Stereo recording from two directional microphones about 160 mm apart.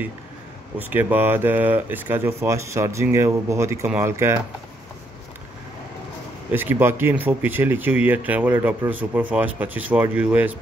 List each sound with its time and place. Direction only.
0.7 s speech: 10° right (ahead or behind)
6.5 s speech: 15° right (ahead or behind)